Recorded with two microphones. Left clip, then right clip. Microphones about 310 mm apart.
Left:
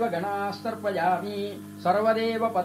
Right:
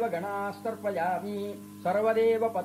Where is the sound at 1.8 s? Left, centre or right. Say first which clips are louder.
Left 2 dB; left.